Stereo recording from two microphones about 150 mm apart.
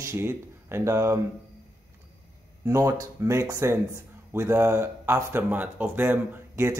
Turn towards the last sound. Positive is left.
turn(degrees=-15)  # may be behind; listen again after turning